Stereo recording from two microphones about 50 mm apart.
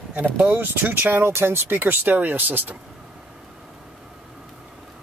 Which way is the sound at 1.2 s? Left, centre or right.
Right.